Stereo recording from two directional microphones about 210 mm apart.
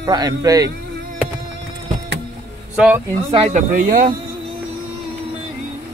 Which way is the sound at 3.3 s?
30° right (ahead or behind).